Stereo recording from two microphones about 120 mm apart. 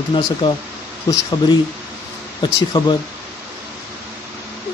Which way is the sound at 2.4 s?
35° left (ahead or behind).